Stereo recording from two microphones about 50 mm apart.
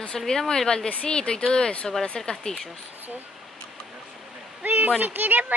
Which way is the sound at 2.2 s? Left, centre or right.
Centre.